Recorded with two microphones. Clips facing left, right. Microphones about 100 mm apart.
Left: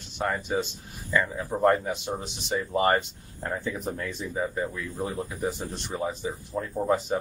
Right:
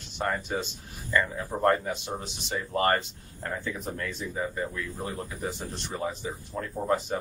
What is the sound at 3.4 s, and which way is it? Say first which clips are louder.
Speech: left 3 dB; 20° left (ahead or behind).